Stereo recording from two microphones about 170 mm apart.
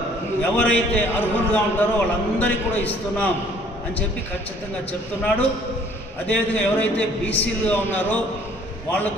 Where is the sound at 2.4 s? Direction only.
10° left (ahead or behind).